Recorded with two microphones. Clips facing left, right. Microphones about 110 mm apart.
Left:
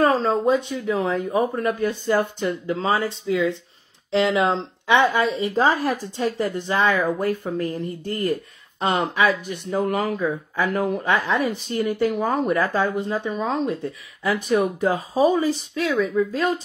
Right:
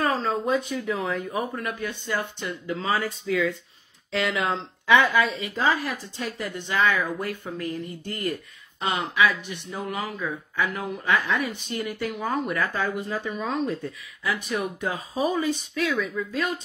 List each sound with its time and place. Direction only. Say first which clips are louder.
0.0 s a woman's voice: left 6 dB; 35° left (ahead or behind)